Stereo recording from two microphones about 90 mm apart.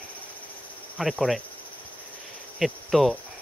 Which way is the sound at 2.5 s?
Centre (ahead or behind).